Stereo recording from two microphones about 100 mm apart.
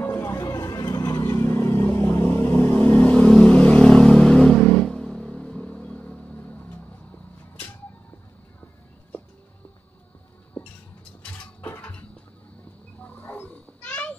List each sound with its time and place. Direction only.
0.0 s vehicle: 25° left (ahead or behind)
1.4 s vehicle: 25° left (ahead or behind)
11.2 s a sound: 15° left (ahead or behind)
13.0 s wild animals: 15° left (ahead or behind)